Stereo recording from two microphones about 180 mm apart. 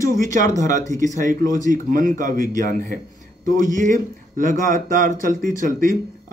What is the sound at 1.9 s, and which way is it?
Speech, 45° right (ahead or behind).